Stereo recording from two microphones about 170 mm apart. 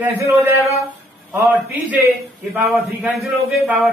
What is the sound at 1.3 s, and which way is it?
A man's voice, 10° right (ahead or behind).